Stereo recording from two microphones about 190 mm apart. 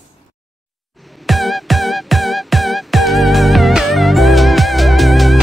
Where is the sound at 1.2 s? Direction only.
Centre (ahead or behind).